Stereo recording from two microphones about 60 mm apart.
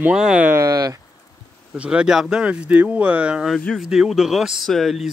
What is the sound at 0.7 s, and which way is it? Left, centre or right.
Speech, right.